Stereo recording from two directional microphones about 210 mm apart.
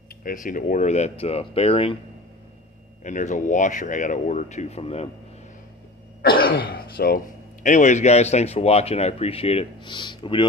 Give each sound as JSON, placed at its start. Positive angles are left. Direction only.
{"t": 0.2, "sound": "a man's voice", "side_deg": 40}
{"t": 3.0, "sound": "a man's voice", "side_deg": 35}
{"t": 6.2, "sound": "cough", "side_deg": 45}
{"t": 6.7, "sound": "a man's voice", "side_deg": 45}